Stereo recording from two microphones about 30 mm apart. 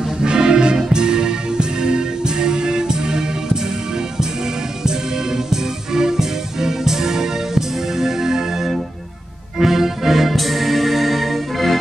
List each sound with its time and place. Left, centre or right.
0.2 s music: right
5.5 s music: centre